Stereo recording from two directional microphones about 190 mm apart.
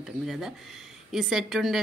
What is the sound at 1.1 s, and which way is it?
Speech, centre (ahead or behind).